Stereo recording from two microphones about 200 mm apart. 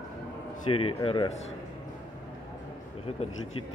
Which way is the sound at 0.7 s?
25° left (ahead or behind).